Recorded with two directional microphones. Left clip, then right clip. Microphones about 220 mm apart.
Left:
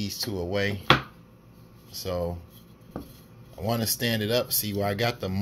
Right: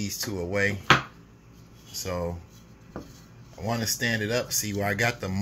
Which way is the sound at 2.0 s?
5° left (ahead or behind).